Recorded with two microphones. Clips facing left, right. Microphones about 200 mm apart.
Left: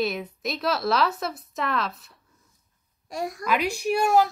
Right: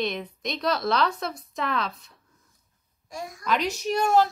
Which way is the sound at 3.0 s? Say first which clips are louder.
Left 6 dB; 70° left (ahead or behind).